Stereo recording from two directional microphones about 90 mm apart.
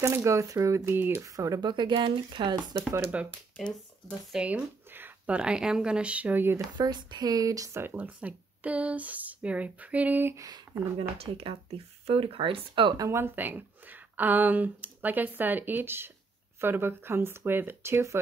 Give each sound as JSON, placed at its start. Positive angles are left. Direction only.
{"t": 0.0, "sound": "speech", "side_deg": -35}
{"t": 0.9, "sound": "speech", "side_deg": -25}
{"t": 1.2, "sound": "speech", "side_deg": -40}
{"t": 1.6, "sound": "speech", "side_deg": -60}
{"t": 4.3, "sound": "speech", "side_deg": -10}
{"t": 6.5, "sound": "speech", "side_deg": -50}
{"t": 7.8, "sound": "speech", "side_deg": -20}
{"t": 10.3, "sound": "speech", "side_deg": -45}
{"t": 11.0, "sound": "speech", "side_deg": -90}
{"t": 12.9, "sound": "speech", "side_deg": -40}
{"t": 13.2, "sound": "speech", "side_deg": -20}